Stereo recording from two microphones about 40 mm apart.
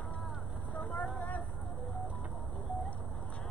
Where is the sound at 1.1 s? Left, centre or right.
Left.